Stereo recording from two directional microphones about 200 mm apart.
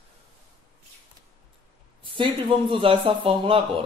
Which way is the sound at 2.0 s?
25° right (ahead or behind).